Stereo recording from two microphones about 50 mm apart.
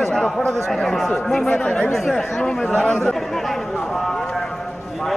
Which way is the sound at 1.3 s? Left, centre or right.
Centre.